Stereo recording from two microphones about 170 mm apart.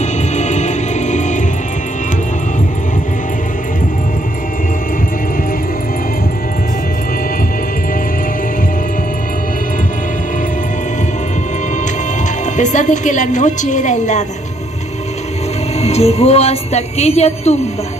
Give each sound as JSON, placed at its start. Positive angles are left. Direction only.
{"t": 0.4, "sound": "music", "side_deg": 45}
{"t": 12.5, "sound": "a woman's voice", "side_deg": 45}
{"t": 15.8, "sound": "speech", "side_deg": 40}